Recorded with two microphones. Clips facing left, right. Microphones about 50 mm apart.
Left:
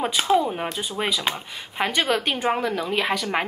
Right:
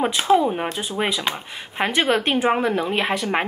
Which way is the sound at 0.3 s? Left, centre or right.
Centre.